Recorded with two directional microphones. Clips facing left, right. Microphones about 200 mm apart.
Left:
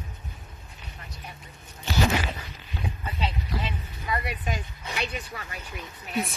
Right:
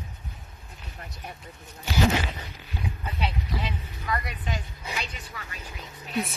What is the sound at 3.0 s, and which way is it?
Speech, centre (ahead or behind).